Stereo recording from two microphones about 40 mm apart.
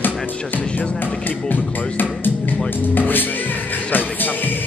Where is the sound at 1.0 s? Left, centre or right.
Left.